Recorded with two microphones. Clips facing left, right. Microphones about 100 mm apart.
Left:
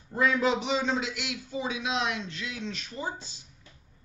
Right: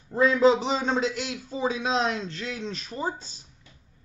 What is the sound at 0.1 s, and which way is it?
A man's voice, 30° right (ahead or behind).